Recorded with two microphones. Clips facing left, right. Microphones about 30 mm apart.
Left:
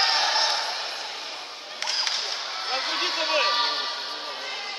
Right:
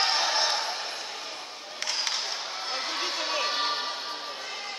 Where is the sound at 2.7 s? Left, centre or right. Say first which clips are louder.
Left 5 dB; left.